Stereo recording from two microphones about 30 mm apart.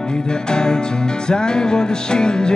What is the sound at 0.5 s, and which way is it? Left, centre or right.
Music, left.